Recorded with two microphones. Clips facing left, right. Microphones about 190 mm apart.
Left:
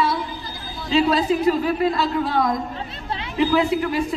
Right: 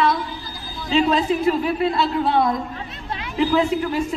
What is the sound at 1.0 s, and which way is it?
A woman's voice, 40° left (ahead or behind).